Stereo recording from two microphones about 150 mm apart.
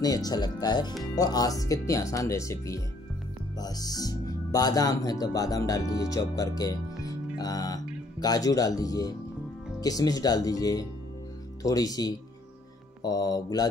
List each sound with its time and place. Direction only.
0.0 s speech: 25° left (ahead or behind)